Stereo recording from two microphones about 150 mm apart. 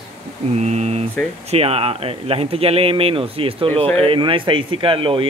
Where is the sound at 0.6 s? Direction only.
50° right (ahead or behind).